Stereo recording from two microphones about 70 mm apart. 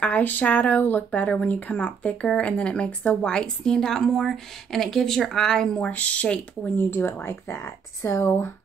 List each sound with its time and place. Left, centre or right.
0.0 s speech: left
5.9 s speech: left
6.8 s speech: left